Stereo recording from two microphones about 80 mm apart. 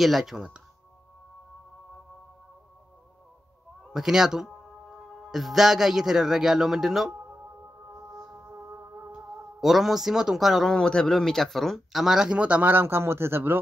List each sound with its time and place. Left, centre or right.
0.0 s speech: centre
3.9 s speech: centre
8.5 s music: right
9.6 s speech: centre; by 13.6 s right